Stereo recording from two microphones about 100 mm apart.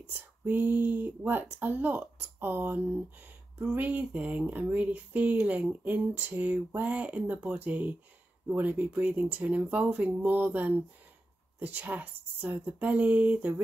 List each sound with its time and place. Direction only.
0.1 s speech: 20° right (ahead or behind)